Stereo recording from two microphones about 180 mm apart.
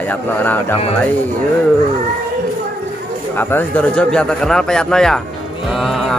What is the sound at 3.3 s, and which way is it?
Speech, 10° left (ahead or behind).